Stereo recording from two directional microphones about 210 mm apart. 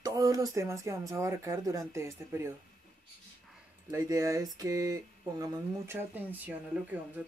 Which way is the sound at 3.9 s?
15° right (ahead or behind).